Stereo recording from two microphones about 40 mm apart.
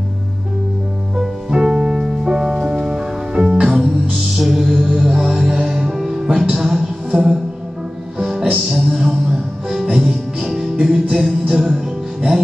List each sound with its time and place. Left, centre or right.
1.1 s music: centre
8.5 s music: centre